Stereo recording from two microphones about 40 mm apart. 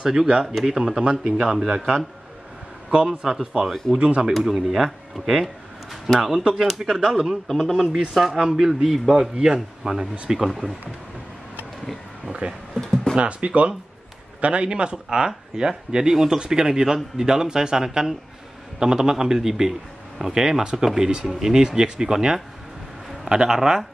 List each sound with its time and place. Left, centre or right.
0.0 s a man's voice: centre
2.9 s a man's voice: centre
3.6 s speech: centre
4.0 s speech: right
4.4 s a man's voice: centre
7.4 s speech: centre
7.7 s a man's voice: centre
8.3 s speech: right
8.5 s a man's voice: centre
9.1 s a man's voice: right
12.3 s a man's voice: right
23.2 s a man's voice: right